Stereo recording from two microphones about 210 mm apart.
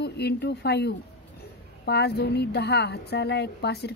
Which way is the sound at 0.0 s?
50° left (ahead or behind).